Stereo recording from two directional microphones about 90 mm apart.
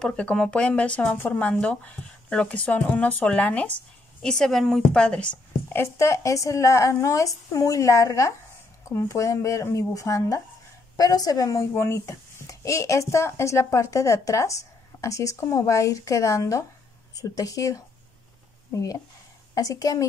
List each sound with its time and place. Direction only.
0.0 s speech: 10° left (ahead or behind)
5.7 s a woman's voice: 30° left (ahead or behind)
11.7 s speech: 30° left (ahead or behind)